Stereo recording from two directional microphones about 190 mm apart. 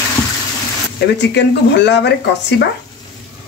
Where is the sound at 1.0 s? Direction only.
65° left (ahead or behind).